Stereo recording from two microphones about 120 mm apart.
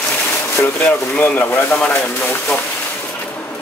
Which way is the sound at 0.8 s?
15° left (ahead or behind).